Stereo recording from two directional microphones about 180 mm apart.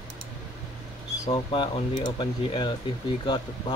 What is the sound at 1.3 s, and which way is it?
Speech, 30° left (ahead or behind).